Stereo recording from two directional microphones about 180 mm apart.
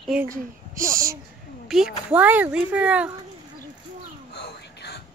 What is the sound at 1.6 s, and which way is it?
A woman's voice, centre (ahead or behind).